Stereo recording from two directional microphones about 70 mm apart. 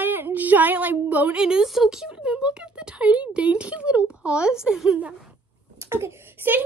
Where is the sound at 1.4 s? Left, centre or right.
Centre.